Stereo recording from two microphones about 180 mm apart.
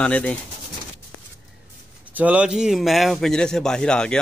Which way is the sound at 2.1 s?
10° right (ahead or behind).